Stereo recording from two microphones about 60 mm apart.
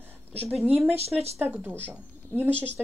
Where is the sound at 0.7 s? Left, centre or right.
Right.